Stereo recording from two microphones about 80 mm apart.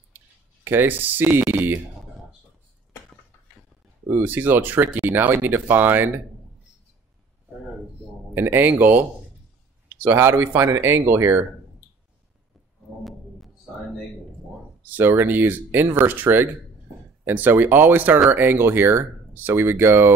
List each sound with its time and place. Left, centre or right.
0.7 s speech: right
4.1 s speech: right
8.4 s speech: right
14.9 s speech: right